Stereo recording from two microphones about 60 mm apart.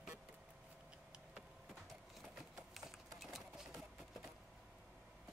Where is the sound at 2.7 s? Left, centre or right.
Centre.